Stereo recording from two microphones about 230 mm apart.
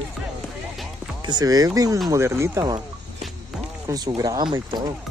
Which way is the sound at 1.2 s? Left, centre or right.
Centre.